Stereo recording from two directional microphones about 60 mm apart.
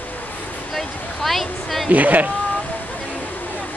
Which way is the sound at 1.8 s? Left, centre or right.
Right.